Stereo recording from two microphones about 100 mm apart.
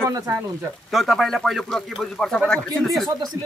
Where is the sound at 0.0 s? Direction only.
30° right (ahead or behind).